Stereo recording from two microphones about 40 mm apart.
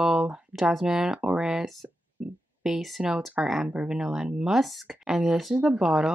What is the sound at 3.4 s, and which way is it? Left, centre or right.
Speech, centre.